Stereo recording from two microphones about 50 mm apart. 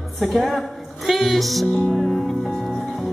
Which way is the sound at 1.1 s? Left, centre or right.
Centre.